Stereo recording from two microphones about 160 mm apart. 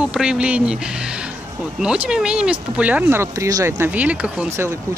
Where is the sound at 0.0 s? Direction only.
5° right (ahead or behind).